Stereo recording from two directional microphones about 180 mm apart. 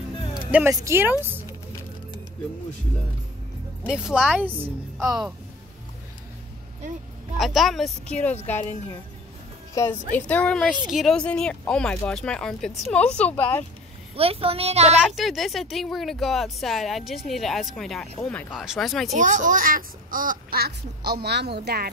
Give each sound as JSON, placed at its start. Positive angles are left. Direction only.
{"t": 0.5, "sound": "speech", "side_deg": -10}
{"t": 3.8, "sound": "speech", "side_deg": -5}
{"t": 7.3, "sound": "speech", "side_deg": 0}
{"t": 9.8, "sound": "a woman's voice", "side_deg": 10}
{"t": 14.1, "sound": "speech", "side_deg": -30}
{"t": 15.0, "sound": "speech", "side_deg": 0}
{"t": 19.1, "sound": "a child's voice", "side_deg": -45}